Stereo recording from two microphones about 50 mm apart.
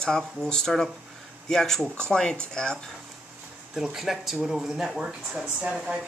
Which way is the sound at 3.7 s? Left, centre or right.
Centre.